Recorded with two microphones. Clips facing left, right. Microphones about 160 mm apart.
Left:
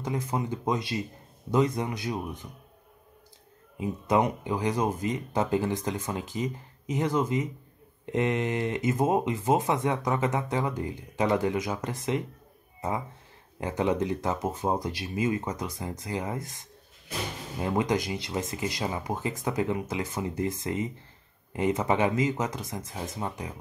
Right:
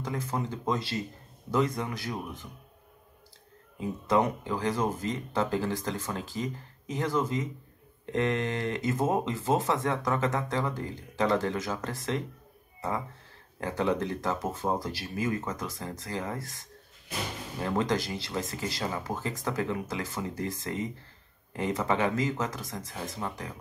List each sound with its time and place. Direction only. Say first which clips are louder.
0.0 s speech: left 2 dB; 20° left (ahead or behind)
3.8 s speech: left 1 dB; 15° left (ahead or behind)
13.6 s speech: left 2 dB; 20° left (ahead or behind)